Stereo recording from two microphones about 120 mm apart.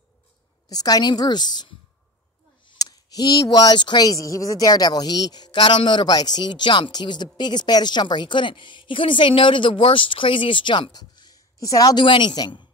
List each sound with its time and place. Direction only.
0.7 s speech: 30° left (ahead or behind)